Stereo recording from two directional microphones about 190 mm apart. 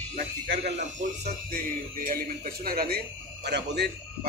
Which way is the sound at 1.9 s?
45° right (ahead or behind).